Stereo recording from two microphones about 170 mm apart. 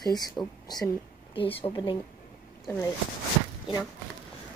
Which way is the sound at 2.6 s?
20° left (ahead or behind).